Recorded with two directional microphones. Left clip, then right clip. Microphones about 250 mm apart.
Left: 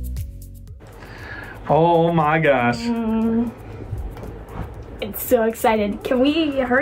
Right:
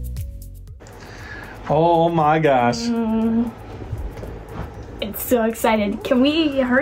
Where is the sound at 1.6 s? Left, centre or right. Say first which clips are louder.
Even; centre.